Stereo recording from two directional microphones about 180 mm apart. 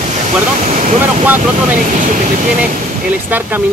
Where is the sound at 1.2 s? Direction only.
10° right (ahead or behind).